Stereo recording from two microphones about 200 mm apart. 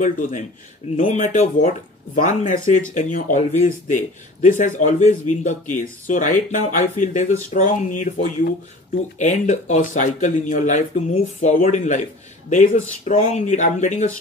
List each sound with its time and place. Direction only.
0.0 s speech: 40° left (ahead or behind)